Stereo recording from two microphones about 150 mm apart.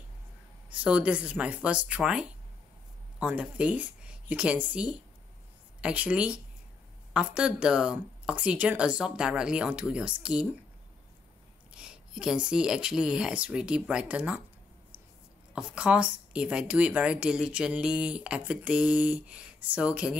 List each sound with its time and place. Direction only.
0.7 s a woman's voice: 10° right (ahead or behind)
11.7 s a woman's voice: 5° right (ahead or behind)
15.5 s a woman's voice: 5° right (ahead or behind)